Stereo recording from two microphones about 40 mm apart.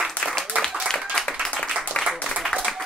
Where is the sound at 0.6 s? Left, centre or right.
Centre.